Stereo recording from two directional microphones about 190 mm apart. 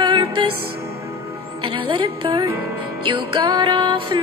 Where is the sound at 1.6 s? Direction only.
25° right (ahead or behind).